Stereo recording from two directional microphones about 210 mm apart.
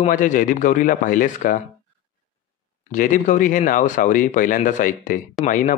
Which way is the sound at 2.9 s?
40° left (ahead or behind).